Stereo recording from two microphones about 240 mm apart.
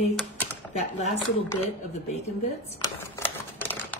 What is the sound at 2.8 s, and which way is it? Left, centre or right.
Typewriter, centre.